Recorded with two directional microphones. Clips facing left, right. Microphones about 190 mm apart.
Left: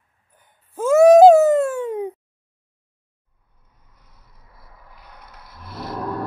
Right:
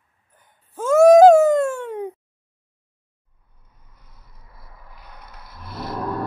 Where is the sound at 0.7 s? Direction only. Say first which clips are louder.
Left 1 dB; 5° left (ahead or behind).